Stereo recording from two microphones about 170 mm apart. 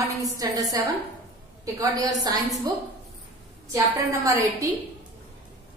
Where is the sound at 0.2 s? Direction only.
20° right (ahead or behind).